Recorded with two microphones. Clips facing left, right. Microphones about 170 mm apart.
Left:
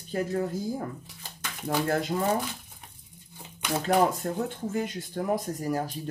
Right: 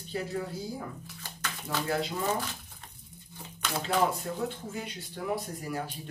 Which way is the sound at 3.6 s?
15° left (ahead or behind).